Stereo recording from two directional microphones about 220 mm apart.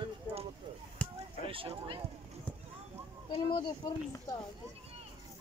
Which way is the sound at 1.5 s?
25° right (ahead or behind).